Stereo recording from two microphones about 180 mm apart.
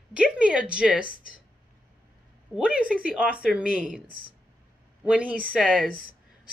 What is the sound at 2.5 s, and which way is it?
A woman's voice, 5° right (ahead or behind).